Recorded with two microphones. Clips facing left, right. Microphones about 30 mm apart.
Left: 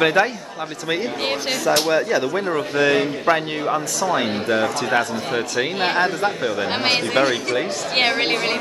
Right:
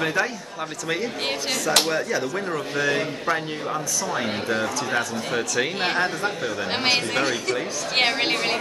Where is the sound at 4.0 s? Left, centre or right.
Left.